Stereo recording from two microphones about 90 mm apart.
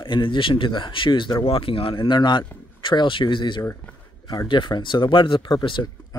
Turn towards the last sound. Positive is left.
turn(degrees=65)  # may be behind; listen again after turning